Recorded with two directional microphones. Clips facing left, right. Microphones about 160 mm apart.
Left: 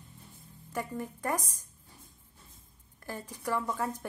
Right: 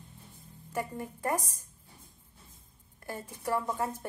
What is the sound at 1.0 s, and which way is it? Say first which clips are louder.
Speech: even; 30° right (ahead or behind).